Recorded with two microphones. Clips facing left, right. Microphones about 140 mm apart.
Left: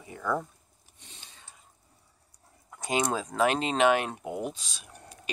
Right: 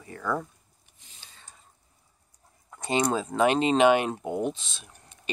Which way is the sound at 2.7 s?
5° left (ahead or behind).